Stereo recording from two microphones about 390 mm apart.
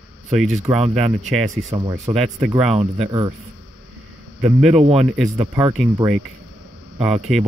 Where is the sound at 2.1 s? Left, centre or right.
Centre.